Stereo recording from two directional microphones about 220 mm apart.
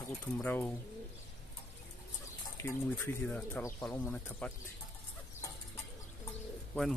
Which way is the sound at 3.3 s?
5° left (ahead or behind).